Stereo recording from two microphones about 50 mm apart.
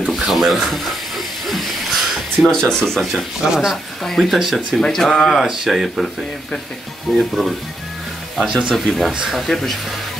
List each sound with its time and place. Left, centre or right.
0.0 s a sound: centre
2.5 s speech: centre
3.4 s speech: centre
4.0 s speech: centre
7.2 s speech: centre
8.5 s speech: centre
8.7 s speech: centre